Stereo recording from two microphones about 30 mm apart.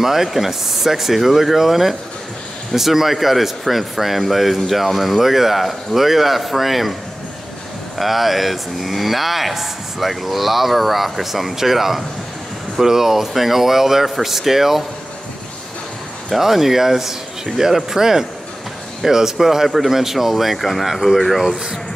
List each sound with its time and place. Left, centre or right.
0.0 s speech: centre
8.0 s speech: centre
16.3 s speech: centre